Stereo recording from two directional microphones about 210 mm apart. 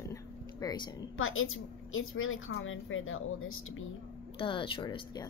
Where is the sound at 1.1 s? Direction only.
75° left (ahead or behind).